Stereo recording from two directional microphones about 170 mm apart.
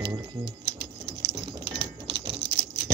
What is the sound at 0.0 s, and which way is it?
Music, 30° right (ahead or behind).